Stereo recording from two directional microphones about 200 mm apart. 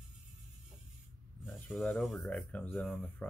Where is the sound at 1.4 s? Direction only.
Centre (ahead or behind).